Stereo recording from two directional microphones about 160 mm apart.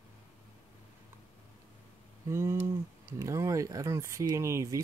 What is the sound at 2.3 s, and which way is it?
Speech, 15° right (ahead or behind).